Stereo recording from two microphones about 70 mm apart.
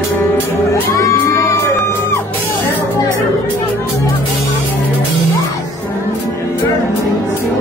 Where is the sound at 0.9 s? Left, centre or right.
Left.